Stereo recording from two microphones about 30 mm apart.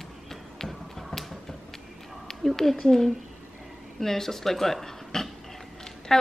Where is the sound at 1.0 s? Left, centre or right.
Centre.